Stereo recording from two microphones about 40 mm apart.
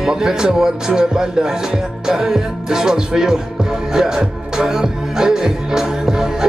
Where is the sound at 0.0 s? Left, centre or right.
Centre.